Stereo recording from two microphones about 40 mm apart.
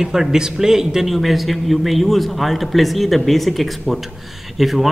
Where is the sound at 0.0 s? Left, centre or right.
Centre.